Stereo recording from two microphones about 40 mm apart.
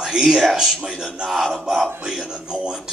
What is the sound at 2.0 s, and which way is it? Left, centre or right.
Speech, centre.